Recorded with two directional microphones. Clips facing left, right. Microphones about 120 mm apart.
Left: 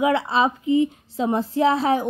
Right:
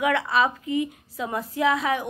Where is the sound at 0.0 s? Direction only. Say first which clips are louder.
Left 3 dB; 30° left (ahead or behind).